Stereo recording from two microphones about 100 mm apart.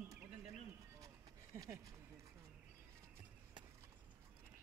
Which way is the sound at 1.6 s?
35° right (ahead or behind).